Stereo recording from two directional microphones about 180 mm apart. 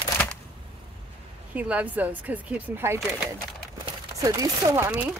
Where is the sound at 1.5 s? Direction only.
10° right (ahead or behind).